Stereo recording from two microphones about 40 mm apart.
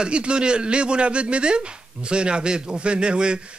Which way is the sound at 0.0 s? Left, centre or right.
Right.